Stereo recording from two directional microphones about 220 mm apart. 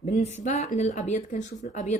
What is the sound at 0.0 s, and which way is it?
Speech, 30° left (ahead or behind).